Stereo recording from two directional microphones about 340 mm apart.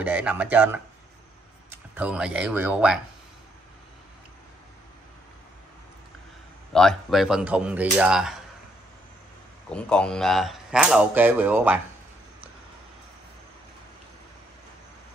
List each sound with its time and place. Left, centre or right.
0.0 s speech: centre
2.0 s speech: centre
6.7 s speech: centre
9.7 s speech: centre